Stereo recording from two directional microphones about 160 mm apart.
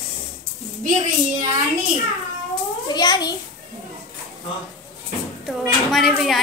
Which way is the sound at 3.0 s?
25° left (ahead or behind).